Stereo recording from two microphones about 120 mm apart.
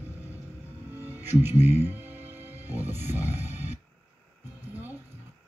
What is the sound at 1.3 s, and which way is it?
Speech, 20° right (ahead or behind).